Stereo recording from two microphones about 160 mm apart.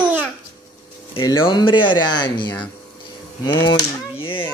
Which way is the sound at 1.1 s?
30° left (ahead or behind).